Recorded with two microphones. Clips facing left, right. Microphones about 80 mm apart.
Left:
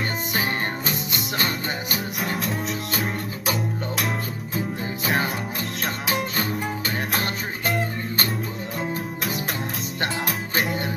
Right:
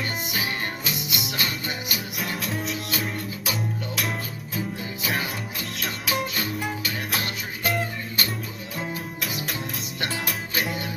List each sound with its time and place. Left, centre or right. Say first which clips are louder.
0.3 s music: left 4 dB; left
2.1 s music: left 2 dB; left
5.0 s music: left 4 dB; left
7.1 s music: left 3 dB; left
8.9 s music: left 4 dB; left